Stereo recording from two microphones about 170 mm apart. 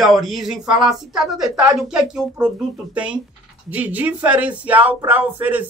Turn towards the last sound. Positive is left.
turn(degrees=-10)  # may be behind; listen again after turning